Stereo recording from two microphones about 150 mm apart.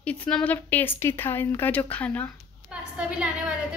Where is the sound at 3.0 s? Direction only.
5° right (ahead or behind).